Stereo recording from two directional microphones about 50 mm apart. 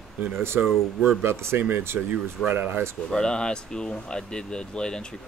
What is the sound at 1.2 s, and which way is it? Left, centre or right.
Speech, right.